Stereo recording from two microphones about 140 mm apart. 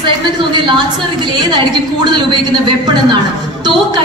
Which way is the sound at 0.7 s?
35° right (ahead or behind).